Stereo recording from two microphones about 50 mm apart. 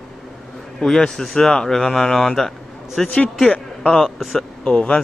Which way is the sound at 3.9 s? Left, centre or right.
Centre.